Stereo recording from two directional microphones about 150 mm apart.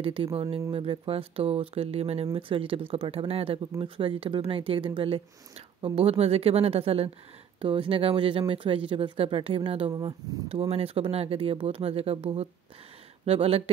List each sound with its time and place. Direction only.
0.0 s speech: 40° right (ahead or behind)